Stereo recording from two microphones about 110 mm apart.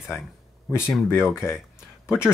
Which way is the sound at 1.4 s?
25° left (ahead or behind).